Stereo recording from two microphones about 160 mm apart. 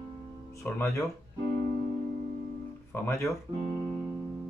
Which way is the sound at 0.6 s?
15° left (ahead or behind).